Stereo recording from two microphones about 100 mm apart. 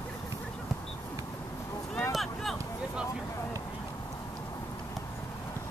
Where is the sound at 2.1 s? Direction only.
Centre (ahead or behind).